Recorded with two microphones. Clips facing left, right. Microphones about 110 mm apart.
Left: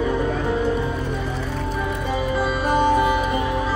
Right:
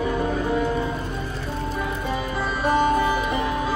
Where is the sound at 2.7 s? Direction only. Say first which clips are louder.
Left 1 dB; 25° left (ahead or behind).